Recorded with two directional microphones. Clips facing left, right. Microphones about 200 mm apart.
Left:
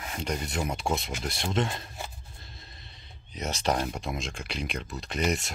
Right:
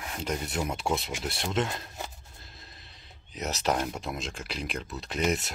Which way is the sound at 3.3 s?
5° right (ahead or behind).